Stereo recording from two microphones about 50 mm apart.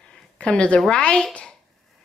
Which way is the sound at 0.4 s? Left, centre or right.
Left.